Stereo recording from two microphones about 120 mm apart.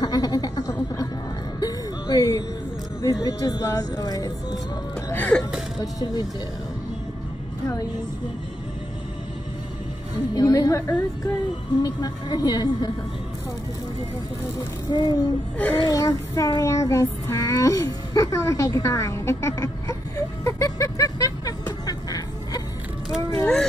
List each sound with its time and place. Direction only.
0.0 s a sound: 30° left (ahead or behind)
1.6 s music: 30° left (ahead or behind)
3.0 s child singing: 25° left (ahead or behind)
5.1 s throat clearing: 15° left (ahead or behind)
5.8 s a woman's voice: 35° left (ahead or behind)
10.3 s child singing: 30° left (ahead or behind)
11.8 s a woman's voice: 35° left (ahead or behind)
14.9 s a woman's voice: 35° left (ahead or behind)
15.5 s speech: 15° left (ahead or behind)
15.9 s child singing: 30° left (ahead or behind)
20.4 s music: 25° left (ahead or behind)
21.8 s a sound: 35° left (ahead or behind)
23.4 s a sound: 5° left (ahead or behind)